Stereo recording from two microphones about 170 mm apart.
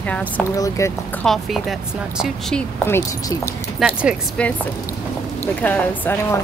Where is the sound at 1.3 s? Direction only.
Centre (ahead or behind).